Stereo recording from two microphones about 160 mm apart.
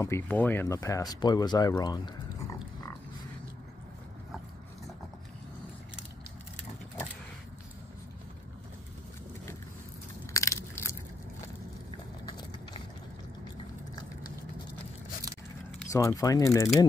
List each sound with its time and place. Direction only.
0.0 s speech: 15° left (ahead or behind)
10.3 s crushing: 20° left (ahead or behind)
12.3 s a sound: 25° left (ahead or behind)
15.9 s speech: 20° left (ahead or behind)